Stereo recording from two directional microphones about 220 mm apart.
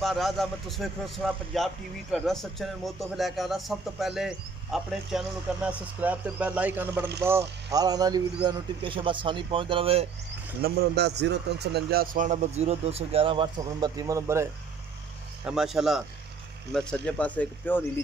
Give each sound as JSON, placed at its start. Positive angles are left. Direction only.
{"t": 0.0, "sound": "a man's voice", "side_deg": 0}
{"t": 10.6, "sound": "speech", "side_deg": -45}
{"t": 15.4, "sound": "a man's voice", "side_deg": 0}